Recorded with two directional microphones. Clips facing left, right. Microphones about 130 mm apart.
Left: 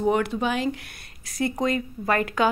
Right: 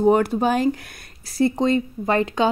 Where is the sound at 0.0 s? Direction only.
40° right (ahead or behind).